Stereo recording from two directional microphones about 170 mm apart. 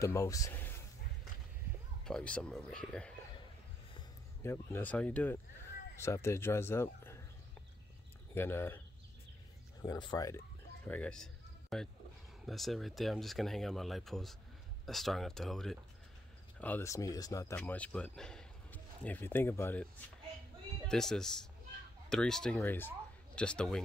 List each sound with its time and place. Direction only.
0.0 s speech: 20° left (ahead or behind)
2.0 s speech: 5° left (ahead or behind)
4.4 s speech: 15° left (ahead or behind)
8.4 s speech: 15° left (ahead or behind)
9.8 s speech: 25° left (ahead or behind)
10.9 s speech: 5° left (ahead or behind)
17.6 s speech: 10° left (ahead or behind)
20.9 s speech: 5° left (ahead or behind)